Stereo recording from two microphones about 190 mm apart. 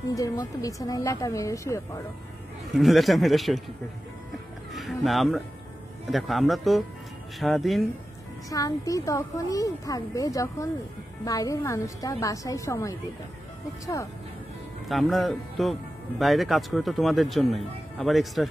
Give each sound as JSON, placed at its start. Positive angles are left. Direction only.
{"t": 0.1, "sound": "speech", "side_deg": 20}
{"t": 2.7, "sound": "speech", "side_deg": 0}
{"t": 4.7, "sound": "speech", "side_deg": 0}
{"t": 8.5, "sound": "speech", "side_deg": 20}
{"t": 14.9, "sound": "speech", "side_deg": 0}